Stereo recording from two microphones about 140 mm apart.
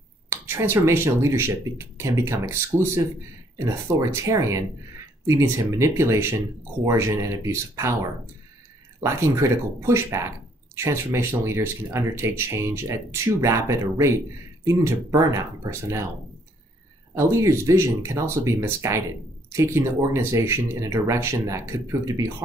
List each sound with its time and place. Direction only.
0.3 s speech: 15° right (ahead or behind)
17.1 s speech: 20° right (ahead or behind)